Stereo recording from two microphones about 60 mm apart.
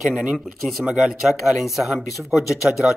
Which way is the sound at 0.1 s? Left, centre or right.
Centre.